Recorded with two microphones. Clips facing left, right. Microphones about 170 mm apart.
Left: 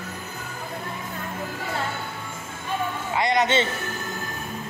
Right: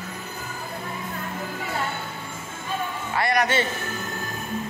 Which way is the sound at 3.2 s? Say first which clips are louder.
Left 1 dB; 20° left (ahead or behind).